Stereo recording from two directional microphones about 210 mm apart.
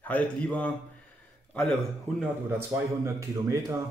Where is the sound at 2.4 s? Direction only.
10° right (ahead or behind).